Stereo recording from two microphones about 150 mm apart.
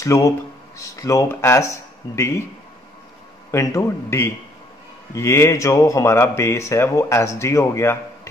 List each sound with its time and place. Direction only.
0.0 s speech: 20° left (ahead or behind)
3.5 s speech: 20° left (ahead or behind)